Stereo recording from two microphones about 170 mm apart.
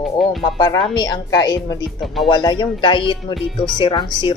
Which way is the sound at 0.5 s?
25° left (ahead or behind).